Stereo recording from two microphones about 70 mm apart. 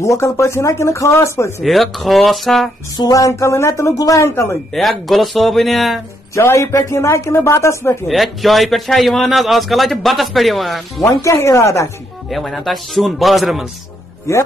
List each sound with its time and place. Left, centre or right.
0.0 s speech: left
1.6 s a man's voice: centre
3.2 s a woman's voice: left
4.7 s a man's voice: centre
6.4 s a woman's voice: left
8.1 s a man's voice: centre
11.1 s speech: left
12.3 s a man's voice: centre
14.3 s speech: left